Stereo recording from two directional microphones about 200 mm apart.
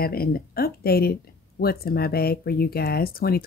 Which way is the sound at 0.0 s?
50° left (ahead or behind).